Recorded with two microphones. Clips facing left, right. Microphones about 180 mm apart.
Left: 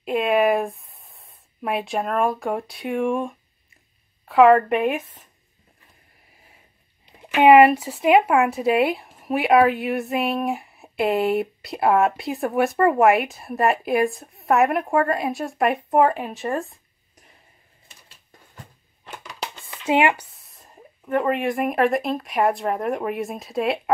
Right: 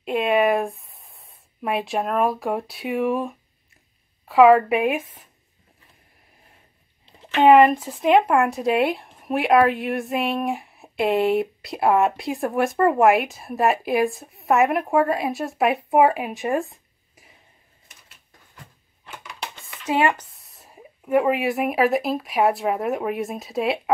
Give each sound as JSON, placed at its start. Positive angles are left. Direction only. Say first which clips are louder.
{"t": 0.0, "sound": "a sound", "louder": "even", "side_deg": 0}
{"t": 4.3, "sound": "speech", "louder": "even", "side_deg": 0}
{"t": 7.1, "sound": "speech", "louder": "left 1 dB", "side_deg": 10}
{"t": 19.8, "sound": "speech", "louder": "left 2 dB", "side_deg": 25}
{"t": 20.3, "sound": "speech", "louder": "right 1 dB", "side_deg": 0}